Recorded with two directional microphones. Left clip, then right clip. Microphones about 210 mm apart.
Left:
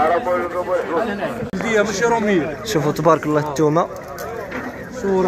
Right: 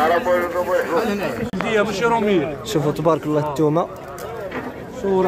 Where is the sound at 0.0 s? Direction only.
50° left (ahead or behind).